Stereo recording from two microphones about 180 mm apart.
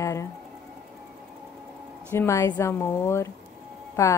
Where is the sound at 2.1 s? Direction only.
15° left (ahead or behind).